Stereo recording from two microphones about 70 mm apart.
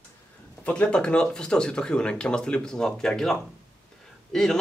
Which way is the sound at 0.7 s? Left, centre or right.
Centre.